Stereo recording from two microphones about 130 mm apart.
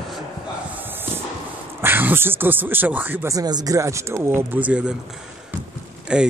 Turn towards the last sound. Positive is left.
turn(degrees=-5)  # may be behind; listen again after turning